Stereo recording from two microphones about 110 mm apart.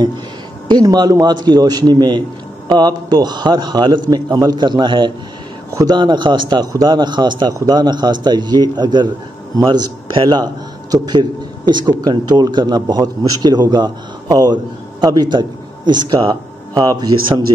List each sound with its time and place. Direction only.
0.7 s a man's voice: 40° right (ahead or behind)
16.8 s a man's voice: 35° right (ahead or behind)